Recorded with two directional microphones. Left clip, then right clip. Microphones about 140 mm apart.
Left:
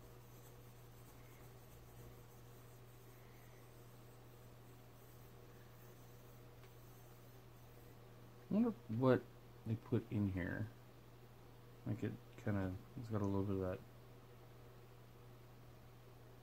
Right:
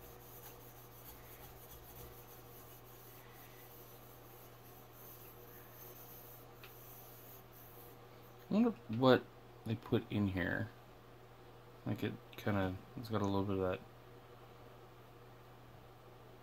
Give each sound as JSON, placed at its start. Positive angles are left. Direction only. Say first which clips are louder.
{"t": 8.5, "sound": "speech", "louder": "right 5 dB", "side_deg": -10}
{"t": 11.8, "sound": "speech", "louder": "right 5 dB", "side_deg": -20}